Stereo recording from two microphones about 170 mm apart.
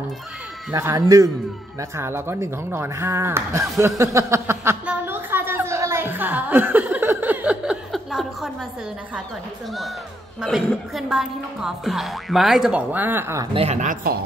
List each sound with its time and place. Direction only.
0.7 s a man's voice: 15° right (ahead or behind)
4.0 s a sound: 15° right (ahead or behind); by 8.5 s centre (ahead or behind)
10.7 s speech: centre (ahead or behind)
13.5 s speech: 35° right (ahead or behind)